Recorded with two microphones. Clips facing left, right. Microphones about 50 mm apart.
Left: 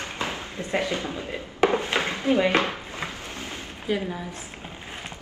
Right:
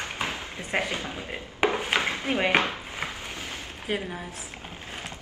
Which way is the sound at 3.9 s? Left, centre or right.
Right.